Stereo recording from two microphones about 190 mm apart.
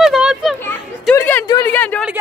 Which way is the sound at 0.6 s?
10° left (ahead or behind).